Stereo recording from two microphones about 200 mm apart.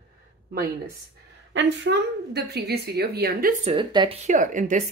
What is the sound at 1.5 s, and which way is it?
Speech, 60° right (ahead or behind).